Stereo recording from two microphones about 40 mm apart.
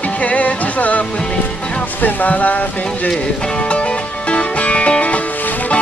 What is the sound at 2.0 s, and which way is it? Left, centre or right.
Speech, left.